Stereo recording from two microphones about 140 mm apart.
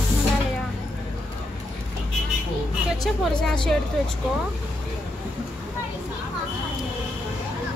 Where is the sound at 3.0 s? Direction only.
5° left (ahead or behind).